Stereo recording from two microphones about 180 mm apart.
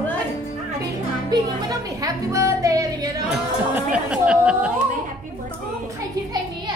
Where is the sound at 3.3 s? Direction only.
5° right (ahead or behind).